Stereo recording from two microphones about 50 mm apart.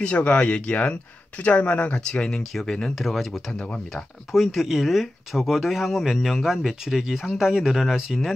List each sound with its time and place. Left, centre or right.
0.0 s speech: left; by 8.3 s centre